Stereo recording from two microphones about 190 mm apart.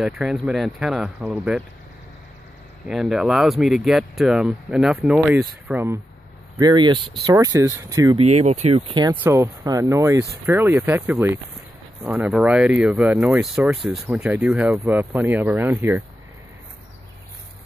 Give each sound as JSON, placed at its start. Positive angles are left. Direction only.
{"t": 0.0, "sound": "speech", "side_deg": 0}
{"t": 2.9, "sound": "speech", "side_deg": 0}
{"t": 6.6, "sound": "speech", "side_deg": -25}
{"t": 8.4, "sound": "speech", "side_deg": -35}
{"t": 9.1, "sound": "speech", "side_deg": -10}